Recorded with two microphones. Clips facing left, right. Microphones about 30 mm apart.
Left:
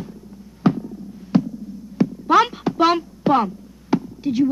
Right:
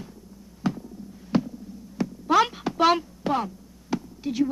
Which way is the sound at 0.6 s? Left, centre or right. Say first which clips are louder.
Left 9 dB; left.